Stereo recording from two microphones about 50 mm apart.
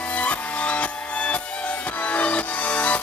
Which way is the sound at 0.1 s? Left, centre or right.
Left.